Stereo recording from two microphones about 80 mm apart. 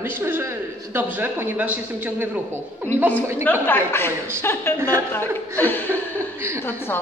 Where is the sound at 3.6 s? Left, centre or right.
Left.